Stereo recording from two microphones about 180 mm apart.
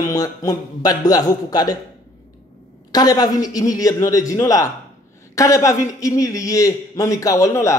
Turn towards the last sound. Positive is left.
turn(degrees=15)  # may be behind; listen again after turning